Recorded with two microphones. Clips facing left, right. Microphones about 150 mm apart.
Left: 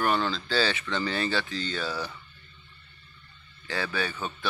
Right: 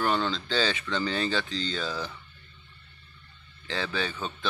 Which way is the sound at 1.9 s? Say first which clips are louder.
Left 1 dB; 10° left (ahead or behind).